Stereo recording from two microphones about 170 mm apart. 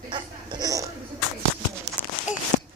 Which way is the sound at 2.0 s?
10° left (ahead or behind).